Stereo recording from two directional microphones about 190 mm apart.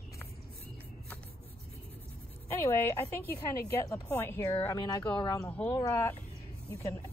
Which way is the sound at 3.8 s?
15° left (ahead or behind).